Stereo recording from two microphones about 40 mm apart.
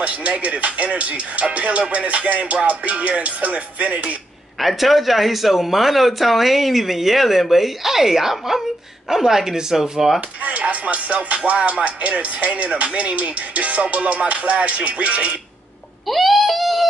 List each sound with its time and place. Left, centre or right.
0.0 s music: right
4.6 s speech: centre
10.4 s music: right
16.1 s a sound: centre